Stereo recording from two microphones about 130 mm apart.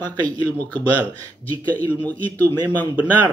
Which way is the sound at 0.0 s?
10° left (ahead or behind).